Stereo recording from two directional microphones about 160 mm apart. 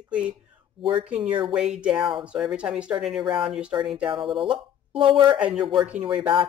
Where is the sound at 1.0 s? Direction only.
5° right (ahead or behind).